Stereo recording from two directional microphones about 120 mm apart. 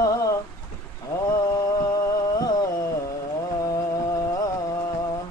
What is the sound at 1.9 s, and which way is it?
Music, 30° left (ahead or behind).